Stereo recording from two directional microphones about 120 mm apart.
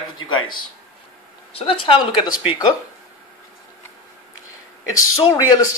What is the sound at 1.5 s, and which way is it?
Speech, 50° left (ahead or behind).